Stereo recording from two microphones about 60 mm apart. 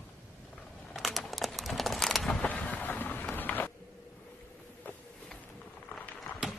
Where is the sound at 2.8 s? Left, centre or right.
Left.